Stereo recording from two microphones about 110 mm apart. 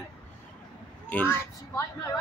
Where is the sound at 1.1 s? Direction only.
20° left (ahead or behind).